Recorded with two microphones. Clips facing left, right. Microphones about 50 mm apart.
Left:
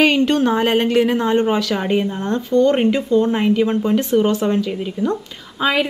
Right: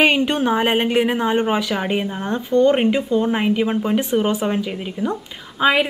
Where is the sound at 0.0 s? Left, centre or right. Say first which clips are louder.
Left 2 dB; centre.